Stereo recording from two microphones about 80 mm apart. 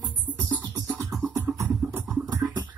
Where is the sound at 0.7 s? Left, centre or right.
Right.